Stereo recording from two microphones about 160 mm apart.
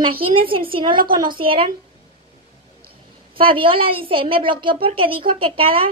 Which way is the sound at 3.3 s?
35° right (ahead or behind).